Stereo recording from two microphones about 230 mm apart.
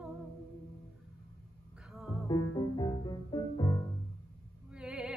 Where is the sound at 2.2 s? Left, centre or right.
Centre.